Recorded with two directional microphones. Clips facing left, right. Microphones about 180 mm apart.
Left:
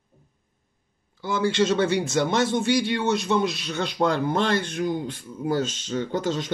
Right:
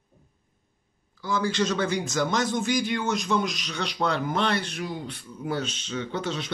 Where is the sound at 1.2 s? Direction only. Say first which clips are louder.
Left 3 dB; 25° left (ahead or behind).